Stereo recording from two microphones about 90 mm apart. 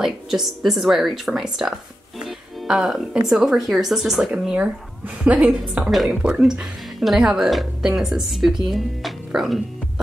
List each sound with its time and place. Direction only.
0.0 s speech: 5° right (ahead or behind)
4.3 s speech: 15° right (ahead or behind)
5.5 s speech: centre (ahead or behind)